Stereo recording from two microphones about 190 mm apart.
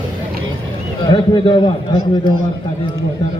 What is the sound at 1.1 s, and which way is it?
Speech, 25° left (ahead or behind).